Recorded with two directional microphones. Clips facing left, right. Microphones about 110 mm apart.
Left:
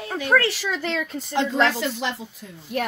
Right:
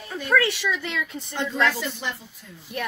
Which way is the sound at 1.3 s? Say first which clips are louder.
Left 3 dB; 90° left.